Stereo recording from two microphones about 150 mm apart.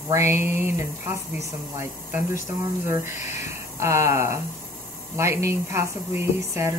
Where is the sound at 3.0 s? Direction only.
55° left (ahead or behind).